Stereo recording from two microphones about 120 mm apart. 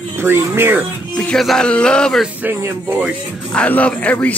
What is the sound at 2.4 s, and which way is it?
Speech, 20° right (ahead or behind).